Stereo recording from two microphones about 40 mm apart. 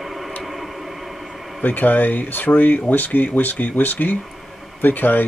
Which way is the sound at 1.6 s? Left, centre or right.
Left.